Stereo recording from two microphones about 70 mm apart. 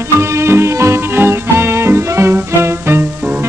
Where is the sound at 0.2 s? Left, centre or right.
Right.